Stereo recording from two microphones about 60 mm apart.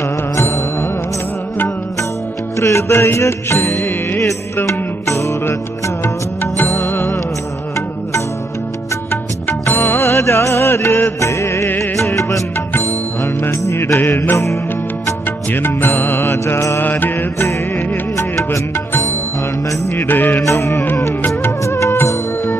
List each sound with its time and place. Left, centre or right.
0.4 s music: left
2.6 s music: left
6.0 s music: left
6.7 s music: left
9.1 s music: left
9.8 s music: left
12.8 s music: left
13.9 s music: left
14.3 s music: left
15.5 s music: left
16.7 s mantra: left
18.1 s music: left
19.9 s music: left
20.4 s music: left